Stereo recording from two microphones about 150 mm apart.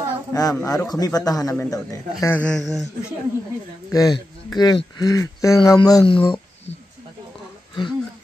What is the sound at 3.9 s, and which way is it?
Speech, 25° left (ahead or behind).